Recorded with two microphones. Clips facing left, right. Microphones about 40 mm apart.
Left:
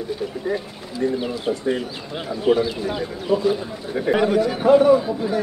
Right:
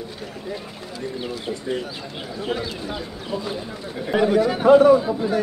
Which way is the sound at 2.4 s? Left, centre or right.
Centre.